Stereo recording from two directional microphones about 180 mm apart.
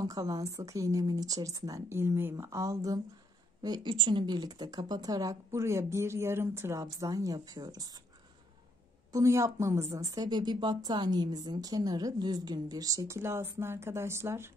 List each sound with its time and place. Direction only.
0.0 s speech: 20° right (ahead or behind)
9.1 s speech: 15° right (ahead or behind)